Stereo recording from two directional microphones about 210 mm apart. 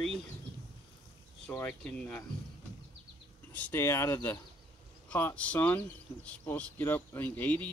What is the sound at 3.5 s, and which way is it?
Speech, 10° left (ahead or behind).